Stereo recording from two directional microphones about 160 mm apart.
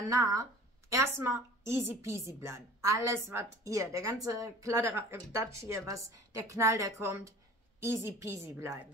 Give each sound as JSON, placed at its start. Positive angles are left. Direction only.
{"t": 0.1, "sound": "a woman's voice", "side_deg": -20}